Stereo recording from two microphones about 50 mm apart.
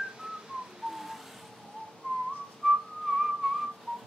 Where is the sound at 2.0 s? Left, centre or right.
Left.